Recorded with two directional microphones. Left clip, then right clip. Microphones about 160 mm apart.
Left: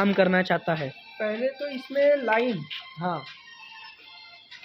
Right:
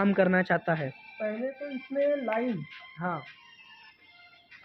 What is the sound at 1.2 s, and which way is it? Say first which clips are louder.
Speech: left 6 dB; 45° left (ahead or behind).